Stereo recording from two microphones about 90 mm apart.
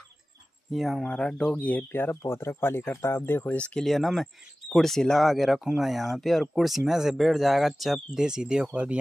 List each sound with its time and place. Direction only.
0.7 s speech: centre (ahead or behind)
1.0 s speech: 10° left (ahead or behind)
3.8 s speech: centre (ahead or behind); by 8.9 s 15° right (ahead or behind)